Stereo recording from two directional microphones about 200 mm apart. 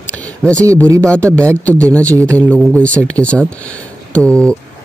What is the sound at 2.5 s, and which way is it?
Speech, 5° left (ahead or behind).